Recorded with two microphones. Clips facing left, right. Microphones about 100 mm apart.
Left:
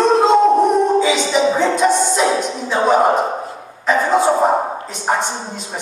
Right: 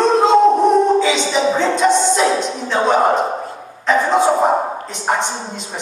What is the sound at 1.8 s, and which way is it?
Music, 15° left (ahead or behind).